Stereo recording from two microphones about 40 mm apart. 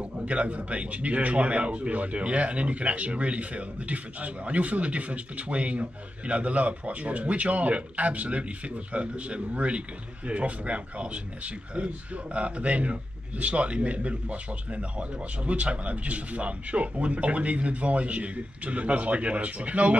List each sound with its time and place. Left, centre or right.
0.0 s speech: right